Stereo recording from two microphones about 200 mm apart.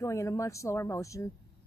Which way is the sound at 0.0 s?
15° left (ahead or behind).